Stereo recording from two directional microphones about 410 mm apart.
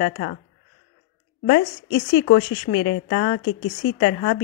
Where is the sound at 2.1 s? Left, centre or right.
Left.